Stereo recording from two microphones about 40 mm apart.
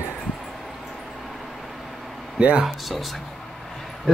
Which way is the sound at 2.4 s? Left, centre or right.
Right.